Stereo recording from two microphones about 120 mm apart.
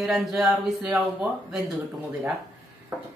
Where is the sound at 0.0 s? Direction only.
5° right (ahead or behind).